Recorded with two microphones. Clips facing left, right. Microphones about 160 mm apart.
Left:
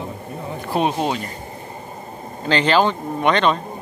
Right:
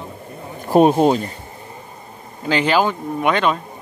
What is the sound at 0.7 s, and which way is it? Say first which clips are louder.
Speech: right 8 dB; 45° right (ahead or behind).